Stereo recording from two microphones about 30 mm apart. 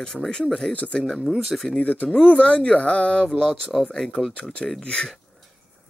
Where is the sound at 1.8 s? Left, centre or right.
Left.